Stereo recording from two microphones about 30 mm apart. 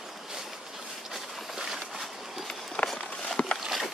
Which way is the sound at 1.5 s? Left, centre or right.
Centre.